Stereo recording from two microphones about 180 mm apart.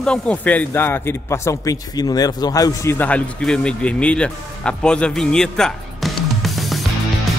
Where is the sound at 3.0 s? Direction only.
5° left (ahead or behind).